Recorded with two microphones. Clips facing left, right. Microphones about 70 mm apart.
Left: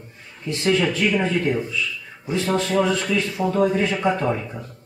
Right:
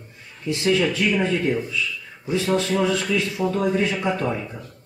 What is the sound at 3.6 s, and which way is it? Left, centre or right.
Speech, centre.